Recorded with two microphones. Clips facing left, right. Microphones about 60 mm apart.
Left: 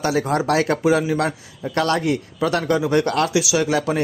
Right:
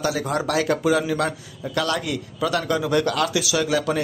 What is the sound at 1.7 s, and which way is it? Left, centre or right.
A man's voice, left.